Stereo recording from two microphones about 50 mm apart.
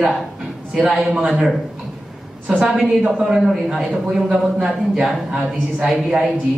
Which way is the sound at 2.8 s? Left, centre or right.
Right.